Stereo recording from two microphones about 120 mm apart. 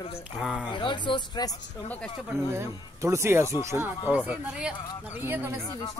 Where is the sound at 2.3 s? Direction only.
20° right (ahead or behind).